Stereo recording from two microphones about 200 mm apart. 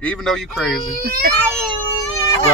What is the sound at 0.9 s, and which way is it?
Speech, 50° right (ahead or behind).